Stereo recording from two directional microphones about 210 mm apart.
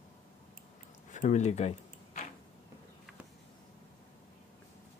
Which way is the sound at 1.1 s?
35° left (ahead or behind).